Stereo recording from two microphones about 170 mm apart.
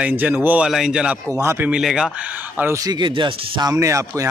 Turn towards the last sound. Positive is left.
turn(degrees=-15)  # may be behind; listen again after turning